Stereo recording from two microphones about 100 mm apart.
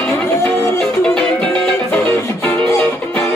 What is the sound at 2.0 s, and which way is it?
Music, 25° left (ahead or behind).